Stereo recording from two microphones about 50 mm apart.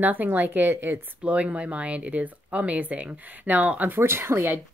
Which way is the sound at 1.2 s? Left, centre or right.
Right.